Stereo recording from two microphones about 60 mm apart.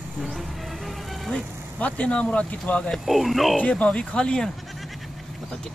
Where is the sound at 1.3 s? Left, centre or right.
Left.